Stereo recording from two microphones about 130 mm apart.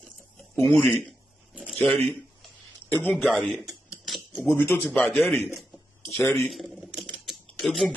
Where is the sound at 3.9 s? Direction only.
5° right (ahead or behind).